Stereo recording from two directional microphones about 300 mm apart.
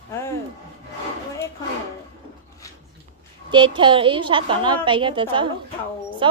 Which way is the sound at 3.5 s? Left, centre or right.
Centre.